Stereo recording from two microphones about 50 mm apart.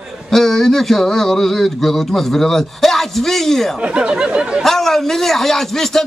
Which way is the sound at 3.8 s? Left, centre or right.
Right.